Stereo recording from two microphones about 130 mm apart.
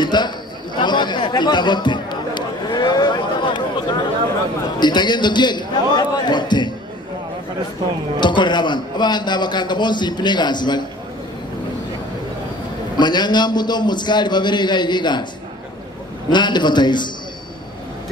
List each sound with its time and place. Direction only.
0.0 s a sound: 35° left (ahead or behind)
0.7 s chatter: 35° left (ahead or behind)
4.7 s a man's voice: 35° left (ahead or behind)
8.2 s a man's voice: 35° left (ahead or behind)
12.9 s a man's voice: 35° left (ahead or behind)
16.3 s a man's voice: 35° left (ahead or behind)